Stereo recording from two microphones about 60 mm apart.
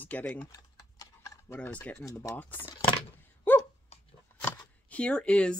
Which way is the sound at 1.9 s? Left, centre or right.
Left.